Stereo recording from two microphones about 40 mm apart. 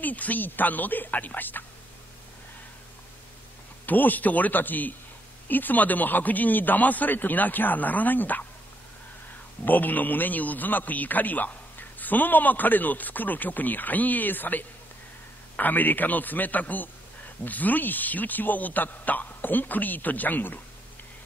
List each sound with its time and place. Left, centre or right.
0.0 s speech: left
3.8 s speech: left
9.7 s speech: left